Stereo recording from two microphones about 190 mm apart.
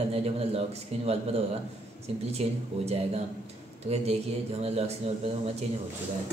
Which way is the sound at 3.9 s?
30° right (ahead or behind).